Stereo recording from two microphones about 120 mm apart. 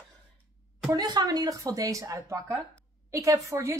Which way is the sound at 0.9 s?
35° right (ahead or behind).